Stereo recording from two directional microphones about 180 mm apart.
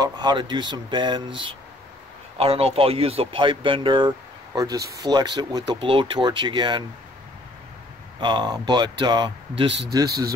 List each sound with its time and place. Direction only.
0.0 s speech: 25° right (ahead or behind)
8.2 s speech: 25° right (ahead or behind)
9.7 s speech: 75° right (ahead or behind)
9.9 s speech: 20° right (ahead or behind)